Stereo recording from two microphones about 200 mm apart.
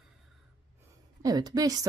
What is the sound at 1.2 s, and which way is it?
Speech, 20° right (ahead or behind).